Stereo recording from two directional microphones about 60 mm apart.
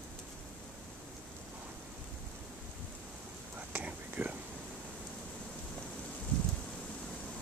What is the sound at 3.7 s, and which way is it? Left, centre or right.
Whispering, right.